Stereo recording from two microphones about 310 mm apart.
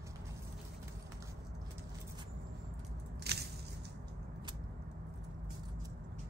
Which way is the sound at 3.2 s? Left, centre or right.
Right.